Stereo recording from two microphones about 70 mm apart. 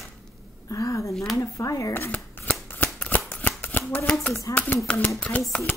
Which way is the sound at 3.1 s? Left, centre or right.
Left.